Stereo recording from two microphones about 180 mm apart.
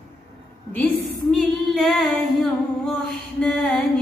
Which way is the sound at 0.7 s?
10° left (ahead or behind).